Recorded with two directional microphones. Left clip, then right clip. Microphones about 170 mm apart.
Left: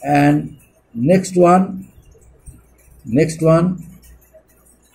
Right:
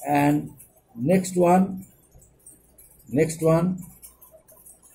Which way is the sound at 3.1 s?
20° left (ahead or behind).